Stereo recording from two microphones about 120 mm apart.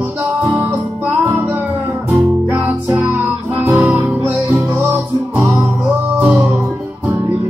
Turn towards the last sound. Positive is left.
turn(degrees=-10)  # may be behind; listen again after turning